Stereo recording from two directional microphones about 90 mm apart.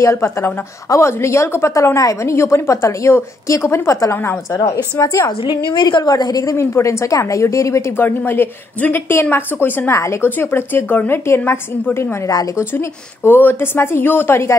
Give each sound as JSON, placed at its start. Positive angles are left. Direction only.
{"t": 0.0, "sound": "a woman's voice", "side_deg": 30}
{"t": 4.1, "sound": "a woman's voice", "side_deg": 25}
{"t": 5.5, "sound": "a woman's voice", "side_deg": 50}
{"t": 6.6, "sound": "a woman's voice", "side_deg": 30}
{"t": 9.9, "sound": "a woman's voice", "side_deg": 35}
{"t": 10.3, "sound": "a woman's voice", "side_deg": 25}
{"t": 12.3, "sound": "a woman's voice", "side_deg": 45}
{"t": 12.7, "sound": "a woman's voice", "side_deg": 25}